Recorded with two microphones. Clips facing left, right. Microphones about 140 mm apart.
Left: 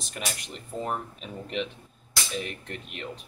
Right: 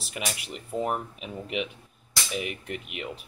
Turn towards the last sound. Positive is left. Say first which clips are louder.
# right 3 dB
turn(degrees=-10)  # may be behind; listen again after turning